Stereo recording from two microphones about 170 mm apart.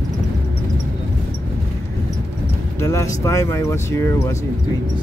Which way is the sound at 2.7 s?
15° left (ahead or behind).